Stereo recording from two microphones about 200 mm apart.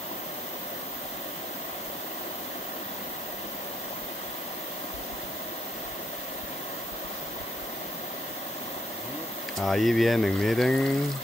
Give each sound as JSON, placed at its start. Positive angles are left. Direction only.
{"t": 9.6, "sound": "speech", "side_deg": 0}